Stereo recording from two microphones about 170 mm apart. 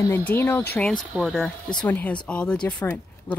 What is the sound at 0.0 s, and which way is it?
Speech, 10° left (ahead or behind).